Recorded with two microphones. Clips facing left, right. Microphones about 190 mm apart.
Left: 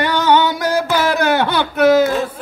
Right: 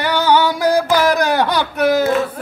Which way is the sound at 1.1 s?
35° right (ahead or behind).